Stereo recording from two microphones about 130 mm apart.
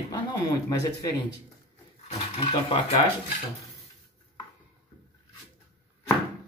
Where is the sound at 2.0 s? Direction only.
45° left (ahead or behind).